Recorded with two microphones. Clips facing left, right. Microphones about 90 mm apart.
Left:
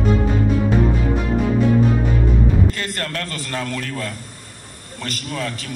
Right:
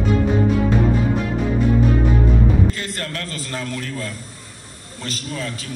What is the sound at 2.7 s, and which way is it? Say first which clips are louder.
A man's voice: left 2 dB; 55° left (ahead or behind).